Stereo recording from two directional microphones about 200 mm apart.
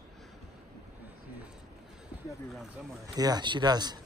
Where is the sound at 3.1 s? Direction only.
20° right (ahead or behind).